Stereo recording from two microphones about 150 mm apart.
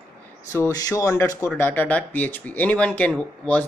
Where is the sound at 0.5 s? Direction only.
20° left (ahead or behind).